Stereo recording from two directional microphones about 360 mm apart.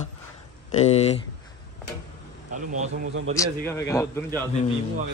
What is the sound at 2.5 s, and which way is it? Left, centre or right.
Speech, right.